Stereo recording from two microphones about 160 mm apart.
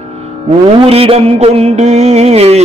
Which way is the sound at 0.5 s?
40° right (ahead or behind).